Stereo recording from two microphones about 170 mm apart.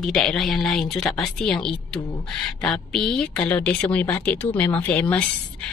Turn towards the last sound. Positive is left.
turn(degrees=10)  # may be behind; listen again after turning